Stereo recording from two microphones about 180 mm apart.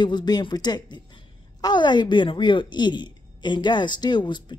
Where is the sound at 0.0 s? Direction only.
25° left (ahead or behind).